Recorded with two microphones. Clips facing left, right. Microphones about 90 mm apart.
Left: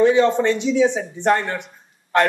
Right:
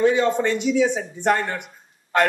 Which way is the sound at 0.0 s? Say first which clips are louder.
Left 3 dB; 20° left (ahead or behind).